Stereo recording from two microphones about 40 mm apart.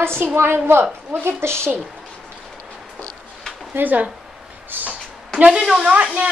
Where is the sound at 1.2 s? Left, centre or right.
Right.